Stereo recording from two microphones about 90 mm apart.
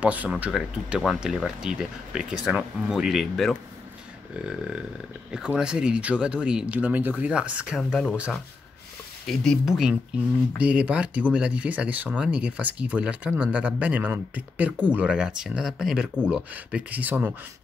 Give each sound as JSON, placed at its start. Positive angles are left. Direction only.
{"t": 0.0, "sound": "speech", "side_deg": -15}
{"t": 9.3, "sound": "speech", "side_deg": 5}
{"t": 10.6, "sound": "speech", "side_deg": -15}